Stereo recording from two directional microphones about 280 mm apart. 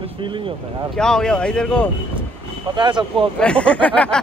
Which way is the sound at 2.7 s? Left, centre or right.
Centre.